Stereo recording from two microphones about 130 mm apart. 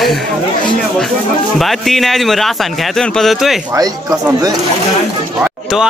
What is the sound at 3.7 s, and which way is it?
Speech, 30° right (ahead or behind).